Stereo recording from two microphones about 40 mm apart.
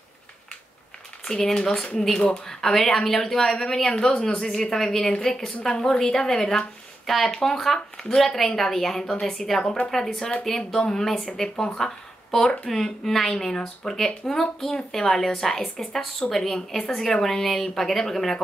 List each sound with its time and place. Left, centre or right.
1.2 s a woman's voice: centre